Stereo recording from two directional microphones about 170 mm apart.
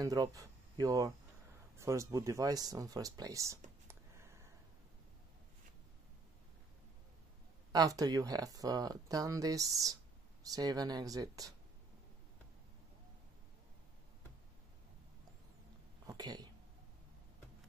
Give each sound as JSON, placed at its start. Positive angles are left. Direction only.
{"t": 0.0, "sound": "speech", "side_deg": -20}
{"t": 7.7, "sound": "speech", "side_deg": -20}
{"t": 16.1, "sound": "speech", "side_deg": -25}